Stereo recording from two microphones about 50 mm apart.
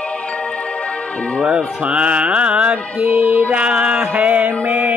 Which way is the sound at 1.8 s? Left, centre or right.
Right.